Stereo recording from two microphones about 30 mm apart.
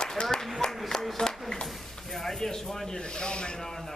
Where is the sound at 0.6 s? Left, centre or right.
Centre.